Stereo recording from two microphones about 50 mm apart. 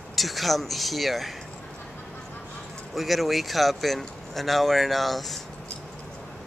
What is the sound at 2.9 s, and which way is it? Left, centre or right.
Speech, centre.